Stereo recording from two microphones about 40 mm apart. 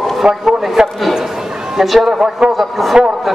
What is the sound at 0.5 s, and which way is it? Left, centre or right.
A man's voice, centre.